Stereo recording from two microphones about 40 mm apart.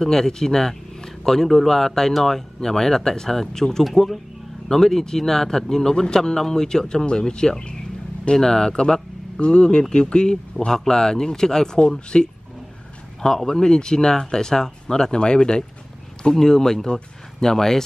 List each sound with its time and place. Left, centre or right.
0.0 s speech: centre
3.8 s speech: centre
13.5 s speech: centre